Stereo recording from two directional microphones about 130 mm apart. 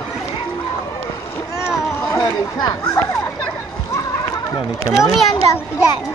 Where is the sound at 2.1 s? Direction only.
30° left (ahead or behind).